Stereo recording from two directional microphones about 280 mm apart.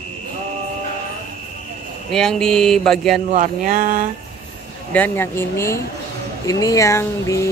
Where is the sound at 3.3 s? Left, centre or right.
Right.